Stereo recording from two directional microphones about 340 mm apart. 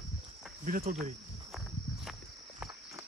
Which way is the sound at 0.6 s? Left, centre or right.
Right.